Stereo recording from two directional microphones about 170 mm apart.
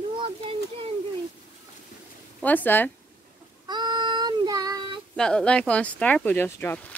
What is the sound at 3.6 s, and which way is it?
Child singing, 25° right (ahead or behind).